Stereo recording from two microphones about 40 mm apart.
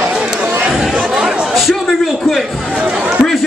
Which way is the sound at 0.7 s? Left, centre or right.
Centre.